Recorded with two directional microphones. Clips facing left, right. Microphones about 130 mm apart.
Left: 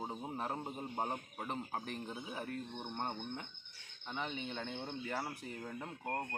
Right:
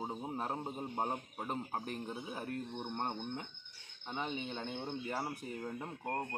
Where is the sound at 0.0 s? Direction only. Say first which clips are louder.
Right 2 dB; 10° right (ahead or behind).